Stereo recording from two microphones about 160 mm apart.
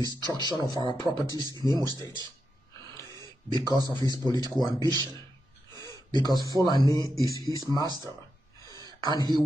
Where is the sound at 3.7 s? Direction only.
25° right (ahead or behind).